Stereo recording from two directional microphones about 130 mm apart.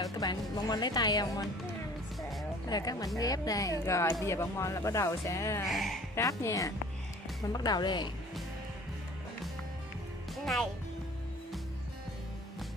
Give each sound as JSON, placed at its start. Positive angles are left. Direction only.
{"t": 0.0, "sound": "speech", "side_deg": 30}
{"t": 2.7, "sound": "speech", "side_deg": 30}
{"t": 5.7, "sound": "speech", "side_deg": 0}
{"t": 6.1, "sound": "speech", "side_deg": 25}
{"t": 10.3, "sound": "music", "side_deg": 0}